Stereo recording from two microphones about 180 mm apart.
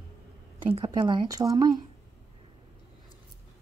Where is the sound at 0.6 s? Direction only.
25° right (ahead or behind).